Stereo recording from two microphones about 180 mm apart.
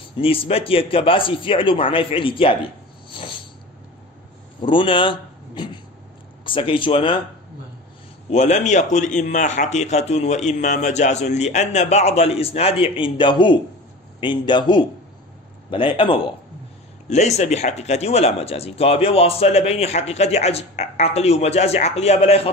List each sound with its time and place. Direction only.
0.2 s a man's voice: 30° left (ahead or behind)
4.6 s a man's voice: 25° left (ahead or behind)
8.3 s a man's voice: 40° left (ahead or behind)